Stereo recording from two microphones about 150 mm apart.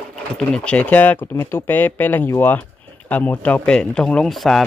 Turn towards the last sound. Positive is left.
turn(degrees=0)  # may be behind; listen again after turning